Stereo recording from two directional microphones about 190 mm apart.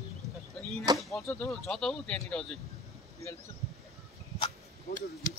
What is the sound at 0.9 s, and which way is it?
Speech, centre (ahead or behind).